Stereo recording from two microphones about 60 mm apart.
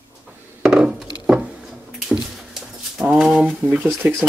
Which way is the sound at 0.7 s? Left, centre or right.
Centre.